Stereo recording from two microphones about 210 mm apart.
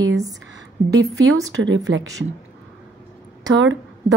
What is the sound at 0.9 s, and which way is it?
Speech, 75° right (ahead or behind).